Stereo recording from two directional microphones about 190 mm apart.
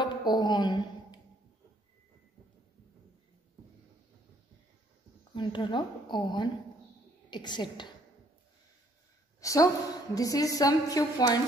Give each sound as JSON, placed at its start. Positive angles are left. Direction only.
{"t": 0.0, "sound": "a sound", "side_deg": 25}
{"t": 5.3, "sound": "a woman's voice", "side_deg": 25}
{"t": 9.4, "sound": "a woman's voice", "side_deg": 15}